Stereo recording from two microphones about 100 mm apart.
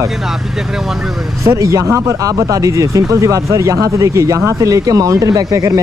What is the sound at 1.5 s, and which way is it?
Speech, 30° right (ahead or behind).